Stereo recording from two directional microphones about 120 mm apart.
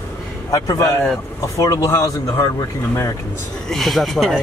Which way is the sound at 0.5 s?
30° left (ahead or behind).